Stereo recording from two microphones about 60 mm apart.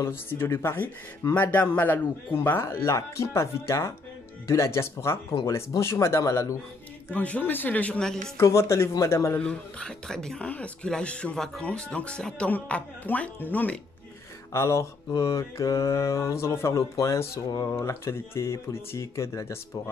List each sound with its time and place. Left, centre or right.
0.4 s a man's voice: left
1.3 s a man's voice: left
5.8 s mantra: left
7.1 s speech: left
8.4 s a man's voice: left
9.4 s speech: centre
11.3 s speech: centre
11.6 s speech: centre
12.7 s speech: left
14.5 s mantra: left
17.6 s a man's voice: left